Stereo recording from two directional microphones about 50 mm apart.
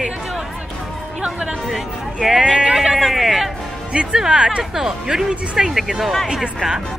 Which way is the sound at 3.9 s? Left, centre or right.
Centre.